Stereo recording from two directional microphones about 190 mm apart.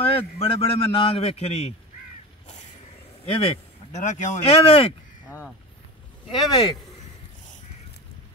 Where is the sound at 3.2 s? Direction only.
35° left (ahead or behind).